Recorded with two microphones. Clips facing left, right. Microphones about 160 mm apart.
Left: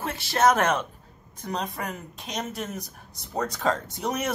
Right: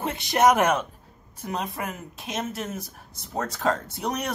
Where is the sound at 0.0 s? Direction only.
20° right (ahead or behind).